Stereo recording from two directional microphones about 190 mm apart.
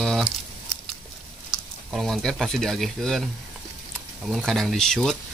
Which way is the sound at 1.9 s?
Centre (ahead or behind).